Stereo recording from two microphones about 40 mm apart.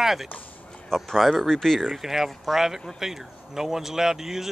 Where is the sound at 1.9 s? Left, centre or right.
Centre.